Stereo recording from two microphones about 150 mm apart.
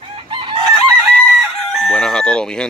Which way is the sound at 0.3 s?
35° right (ahead or behind).